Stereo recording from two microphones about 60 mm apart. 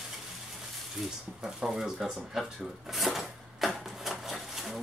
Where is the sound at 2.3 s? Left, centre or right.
Centre.